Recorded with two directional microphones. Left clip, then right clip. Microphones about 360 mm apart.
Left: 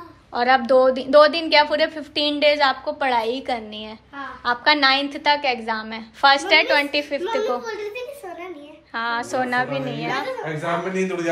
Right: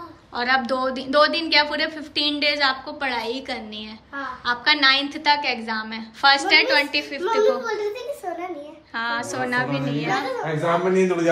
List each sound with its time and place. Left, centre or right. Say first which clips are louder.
0.3 s a woman's voice: left 5 dB; centre
8.9 s a woman's voice: left 2 dB; centre
10.4 s speech: right 3 dB; right